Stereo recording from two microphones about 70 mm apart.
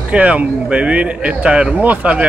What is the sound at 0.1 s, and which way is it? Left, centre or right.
Speech, centre.